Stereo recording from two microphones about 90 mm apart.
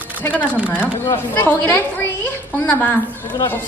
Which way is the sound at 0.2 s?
20° left (ahead or behind).